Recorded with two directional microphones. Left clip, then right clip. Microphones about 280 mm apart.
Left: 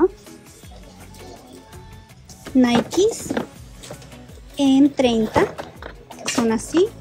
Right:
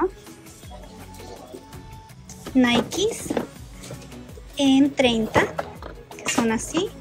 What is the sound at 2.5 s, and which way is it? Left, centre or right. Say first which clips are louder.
Speech: left 3 dB; centre.